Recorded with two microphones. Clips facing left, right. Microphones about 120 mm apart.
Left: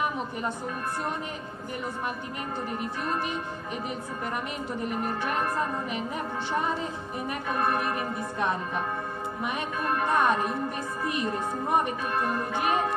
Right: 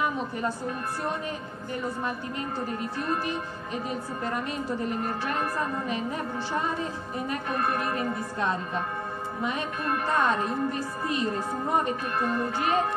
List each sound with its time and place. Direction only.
4.3 s a woman's voice: 20° left (ahead or behind)
7.8 s a woman's voice: 20° left (ahead or behind)
10.0 s a woman's voice: 15° left (ahead or behind)